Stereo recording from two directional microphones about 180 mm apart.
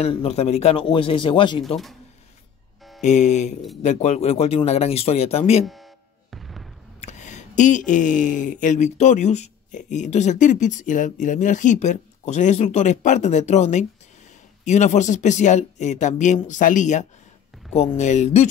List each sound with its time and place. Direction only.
0.0 s speech: 35° left (ahead or behind)
3.0 s speech: 40° left (ahead or behind)
6.3 s fireworks: centre (ahead or behind)
7.0 s speech: 40° left (ahead or behind)